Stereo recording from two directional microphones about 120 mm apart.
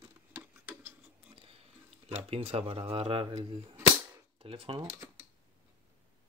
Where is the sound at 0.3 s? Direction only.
20° right (ahead or behind).